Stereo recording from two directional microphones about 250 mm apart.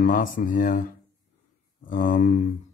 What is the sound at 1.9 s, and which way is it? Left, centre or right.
Speech, left.